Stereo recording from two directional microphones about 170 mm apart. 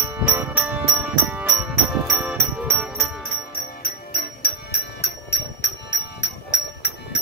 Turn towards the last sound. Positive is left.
turn(degrees=85)